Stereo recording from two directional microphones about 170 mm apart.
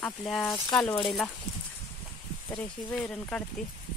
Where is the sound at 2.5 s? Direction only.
5° left (ahead or behind).